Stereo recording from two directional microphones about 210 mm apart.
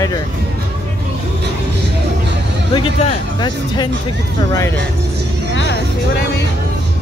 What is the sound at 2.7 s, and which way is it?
Speech, 20° left (ahead or behind).